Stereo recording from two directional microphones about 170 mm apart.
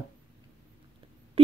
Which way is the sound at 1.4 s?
35° right (ahead or behind).